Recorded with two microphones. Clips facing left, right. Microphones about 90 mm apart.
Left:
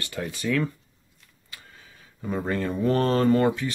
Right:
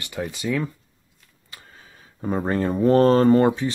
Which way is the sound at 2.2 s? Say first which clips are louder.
Right 4 dB; 35° right (ahead or behind).